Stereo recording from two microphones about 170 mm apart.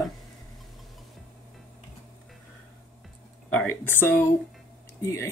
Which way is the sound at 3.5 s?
10° left (ahead or behind).